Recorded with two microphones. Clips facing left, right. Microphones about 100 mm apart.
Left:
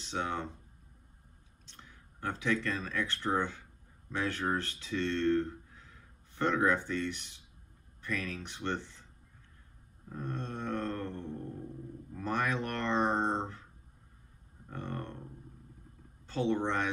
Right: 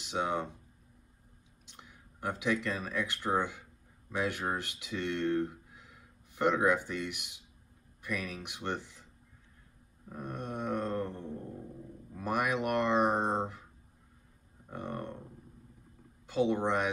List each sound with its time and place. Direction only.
0.0 s speech: 15° right (ahead or behind)
1.7 s speech: 15° right (ahead or behind)
10.1 s speech: 15° right (ahead or behind)
14.7 s speech: 15° right (ahead or behind)
16.3 s speech: 15° right (ahead or behind)